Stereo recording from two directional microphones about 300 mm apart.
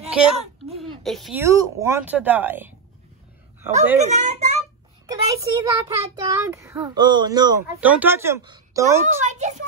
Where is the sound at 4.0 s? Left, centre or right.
Right.